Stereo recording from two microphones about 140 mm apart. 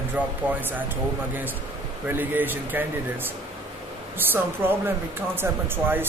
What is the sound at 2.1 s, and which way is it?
Speech, 15° right (ahead or behind).